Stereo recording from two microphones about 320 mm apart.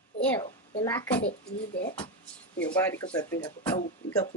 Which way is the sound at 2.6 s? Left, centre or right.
Centre.